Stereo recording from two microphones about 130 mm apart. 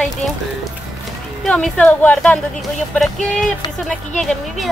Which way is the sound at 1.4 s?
5° left (ahead or behind).